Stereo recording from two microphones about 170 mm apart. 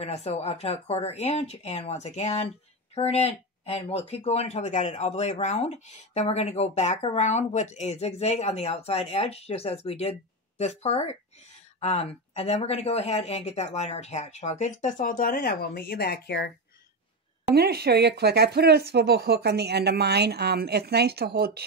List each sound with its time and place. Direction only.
0.0 s speech: 40° left (ahead or behind); by 16.5 s 75° left (ahead or behind)
17.6 s speech: 70° right (ahead or behind)